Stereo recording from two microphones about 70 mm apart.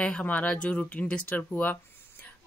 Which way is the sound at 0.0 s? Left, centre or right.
Centre.